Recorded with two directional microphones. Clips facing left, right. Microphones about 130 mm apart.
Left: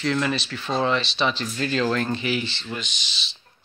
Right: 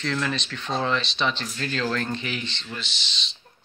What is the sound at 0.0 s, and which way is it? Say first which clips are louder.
Speech: left 4 dB; 10° left (ahead or behind).